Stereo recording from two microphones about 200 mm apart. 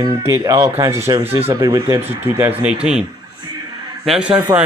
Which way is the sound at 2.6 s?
5° right (ahead or behind).